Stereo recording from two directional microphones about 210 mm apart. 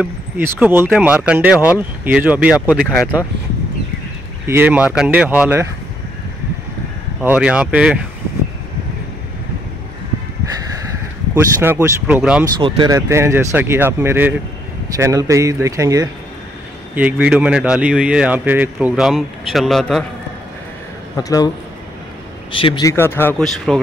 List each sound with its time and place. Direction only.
0.0 s speech: 10° right (ahead or behind)
4.5 s speech: 10° right (ahead or behind)
7.2 s speech: 5° right (ahead or behind)
11.3 s speech: 10° right (ahead or behind)
12.5 s speech: 20° right (ahead or behind); by 20.1 s centre (ahead or behind)
21.2 s speech: 15° left (ahead or behind)
22.5 s speech: 25° left (ahead or behind); by 23.8 s centre (ahead or behind)